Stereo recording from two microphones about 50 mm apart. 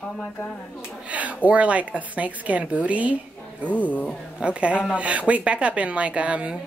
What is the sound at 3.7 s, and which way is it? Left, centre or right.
Speech, left.